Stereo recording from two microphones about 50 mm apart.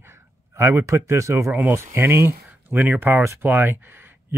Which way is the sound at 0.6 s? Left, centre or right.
Right.